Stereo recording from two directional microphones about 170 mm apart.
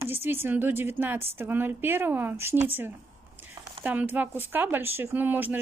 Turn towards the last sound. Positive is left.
turn(degrees=-10)  # may be behind; listen again after turning